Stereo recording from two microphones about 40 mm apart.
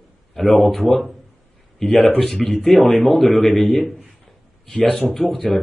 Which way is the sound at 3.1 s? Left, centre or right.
Left.